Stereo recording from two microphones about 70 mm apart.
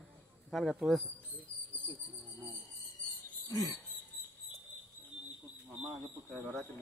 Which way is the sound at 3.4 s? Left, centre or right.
Left.